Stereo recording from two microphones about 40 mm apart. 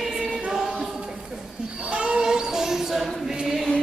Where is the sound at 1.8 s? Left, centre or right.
Right.